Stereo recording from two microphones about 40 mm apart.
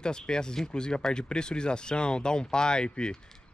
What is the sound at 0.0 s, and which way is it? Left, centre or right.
Speech, centre.